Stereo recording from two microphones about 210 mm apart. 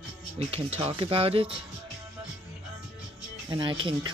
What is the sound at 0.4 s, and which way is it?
Speech, 30° right (ahead or behind).